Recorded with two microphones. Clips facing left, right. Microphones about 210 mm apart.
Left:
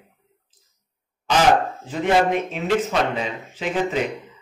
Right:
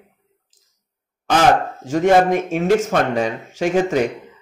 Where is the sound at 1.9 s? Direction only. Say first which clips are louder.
Right 5 dB; 45° right (ahead or behind).